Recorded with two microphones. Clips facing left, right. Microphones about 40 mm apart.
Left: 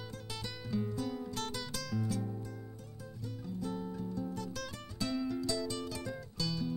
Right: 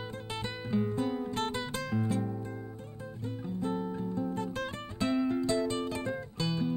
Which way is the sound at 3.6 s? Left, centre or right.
Right.